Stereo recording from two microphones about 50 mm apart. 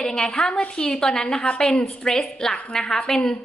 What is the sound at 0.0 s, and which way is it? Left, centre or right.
A woman's voice, centre.